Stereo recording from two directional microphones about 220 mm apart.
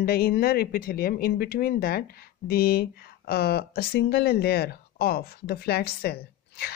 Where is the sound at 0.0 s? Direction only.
45° left (ahead or behind).